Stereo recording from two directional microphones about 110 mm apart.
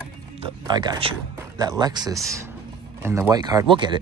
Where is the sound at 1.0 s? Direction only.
55° right (ahead or behind).